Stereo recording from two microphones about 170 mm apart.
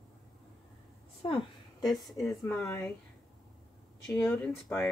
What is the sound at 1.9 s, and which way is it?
Speech, centre (ahead or behind).